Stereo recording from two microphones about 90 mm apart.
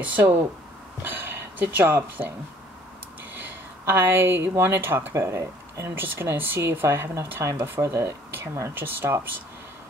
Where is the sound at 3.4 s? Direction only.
20° right (ahead or behind).